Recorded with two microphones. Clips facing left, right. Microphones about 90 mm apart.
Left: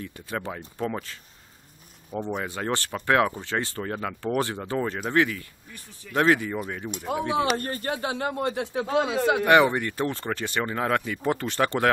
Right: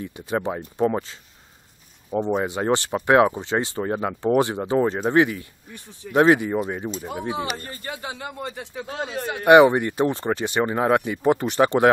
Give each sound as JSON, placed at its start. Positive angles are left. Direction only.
{"t": 0.0, "sound": "speech", "side_deg": -20}
{"t": 2.1, "sound": "speech", "side_deg": -20}
{"t": 7.1, "sound": "speech", "side_deg": 90}
{"t": 7.5, "sound": "speech", "side_deg": 55}
{"t": 9.5, "sound": "speech", "side_deg": -20}